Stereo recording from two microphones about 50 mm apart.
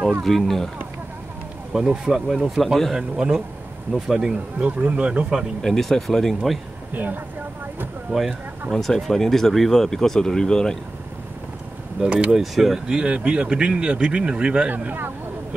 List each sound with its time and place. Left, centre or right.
0.2 s speech: centre
1.7 s speech: centre
3.0 s speech: centre
4.6 s speech: right
5.6 s speech: centre
6.9 s a woman's voice: right
8.1 s speech: centre
8.7 s speech: centre
12.0 s speech: right
12.3 s speech: centre
12.8 s speech: centre
14.7 s speech: right